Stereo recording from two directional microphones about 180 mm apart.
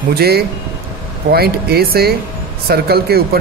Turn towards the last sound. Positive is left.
turn(degrees=-60)  # may be behind; listen again after turning